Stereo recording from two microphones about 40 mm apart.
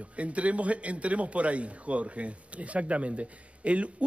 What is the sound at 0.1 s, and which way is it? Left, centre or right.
A man's voice, right.